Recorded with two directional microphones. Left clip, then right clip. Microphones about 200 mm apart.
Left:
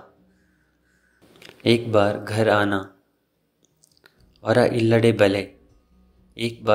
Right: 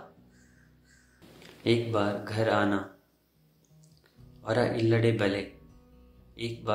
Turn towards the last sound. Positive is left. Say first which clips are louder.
# left 8 dB
turn(degrees=35)  # may be behind; listen again after turning